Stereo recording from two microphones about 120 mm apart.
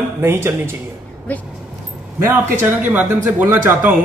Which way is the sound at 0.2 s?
20° right (ahead or behind).